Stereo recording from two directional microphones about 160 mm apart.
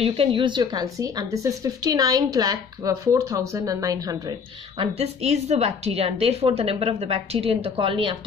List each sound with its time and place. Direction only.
0.0 s speech: 35° right (ahead or behind)
4.7 s a woman's voice: 40° right (ahead or behind)